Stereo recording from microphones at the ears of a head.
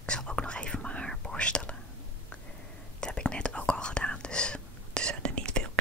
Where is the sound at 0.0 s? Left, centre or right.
Centre.